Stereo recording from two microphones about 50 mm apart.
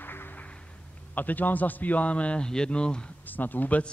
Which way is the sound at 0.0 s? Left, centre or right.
Left.